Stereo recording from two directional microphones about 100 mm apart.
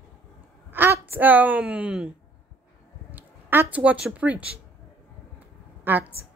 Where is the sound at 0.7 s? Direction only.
20° right (ahead or behind).